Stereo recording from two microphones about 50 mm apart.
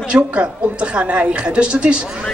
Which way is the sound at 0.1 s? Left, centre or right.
Right.